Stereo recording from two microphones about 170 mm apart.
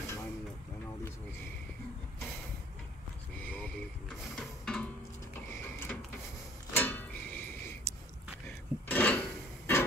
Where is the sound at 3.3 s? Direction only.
10° left (ahead or behind).